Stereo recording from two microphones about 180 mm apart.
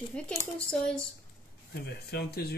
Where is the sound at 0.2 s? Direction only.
5° left (ahead or behind).